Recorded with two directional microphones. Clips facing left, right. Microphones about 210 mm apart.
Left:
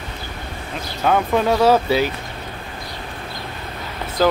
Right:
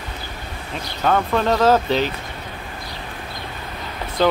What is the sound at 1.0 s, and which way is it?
Speech, 10° left (ahead or behind).